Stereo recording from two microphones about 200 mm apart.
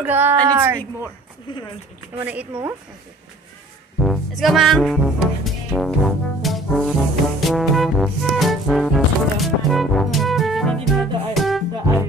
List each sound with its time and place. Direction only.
0.0 s speech: 10° right (ahead or behind)
1.5 s speech: 25° left (ahead or behind)
2.1 s speech: 10° right (ahead or behind)
4.0 s music: centre (ahead or behind)